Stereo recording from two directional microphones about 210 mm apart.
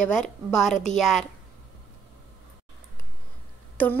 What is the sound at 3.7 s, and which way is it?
Speech, 10° left (ahead or behind).